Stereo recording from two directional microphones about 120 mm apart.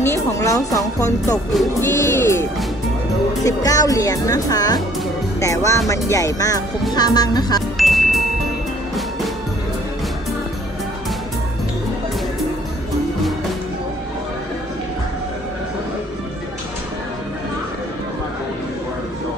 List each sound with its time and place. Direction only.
0.0 s speech: 25° left (ahead or behind)
1.8 s music: 25° left (ahead or behind)
3.4 s speech: 30° left (ahead or behind)
7.7 s music: centre (ahead or behind)